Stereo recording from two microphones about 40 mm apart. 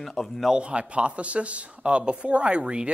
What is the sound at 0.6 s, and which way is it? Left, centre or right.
Speech, right.